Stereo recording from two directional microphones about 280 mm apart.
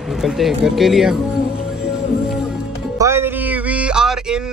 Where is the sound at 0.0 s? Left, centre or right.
Centre.